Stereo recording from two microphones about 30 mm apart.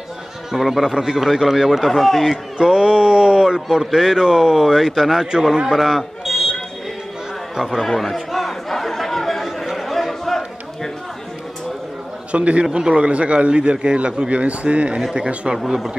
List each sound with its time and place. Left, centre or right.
0.6 s a man's voice: centre
0.9 s a man's voice: right; by 2.3 s centre
2.6 s speech: right
3.8 s speech: centre
5.7 s buzzer: centre
7.5 s speech: centre
8.0 s chatter: centre
12.3 s a man's voice: right
15.1 s a man's voice: right
15.6 s a man's voice: centre